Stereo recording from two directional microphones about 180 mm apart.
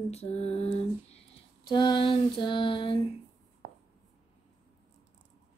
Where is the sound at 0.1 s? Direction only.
35° left (ahead or behind).